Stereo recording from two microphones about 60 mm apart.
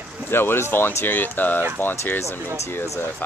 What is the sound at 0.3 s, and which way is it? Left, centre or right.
Speech, left.